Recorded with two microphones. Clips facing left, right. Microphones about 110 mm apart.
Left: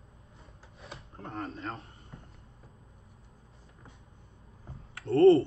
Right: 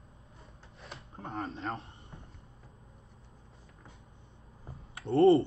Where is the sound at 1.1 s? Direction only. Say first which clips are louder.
Right 1 dB; 25° right (ahead or behind).